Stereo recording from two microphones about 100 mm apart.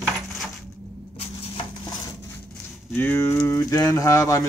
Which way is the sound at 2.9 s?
25° left (ahead or behind).